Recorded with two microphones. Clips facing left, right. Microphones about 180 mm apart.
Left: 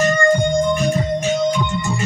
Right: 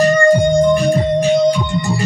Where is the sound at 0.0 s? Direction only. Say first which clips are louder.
Right 5 dB; 35° right (ahead or behind).